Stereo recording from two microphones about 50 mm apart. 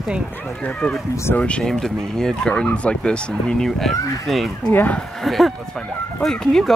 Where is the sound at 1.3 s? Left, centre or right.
Left.